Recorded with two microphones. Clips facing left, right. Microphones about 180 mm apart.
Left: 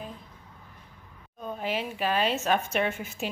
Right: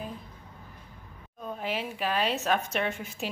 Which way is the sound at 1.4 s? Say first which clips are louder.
Left 2 dB; centre (ahead or behind).